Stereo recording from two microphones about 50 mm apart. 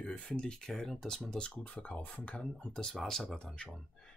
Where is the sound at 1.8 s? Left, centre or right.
Left.